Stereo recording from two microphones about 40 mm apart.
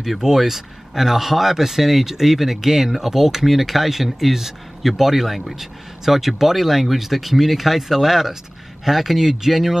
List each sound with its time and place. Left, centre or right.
0.0 s speech: centre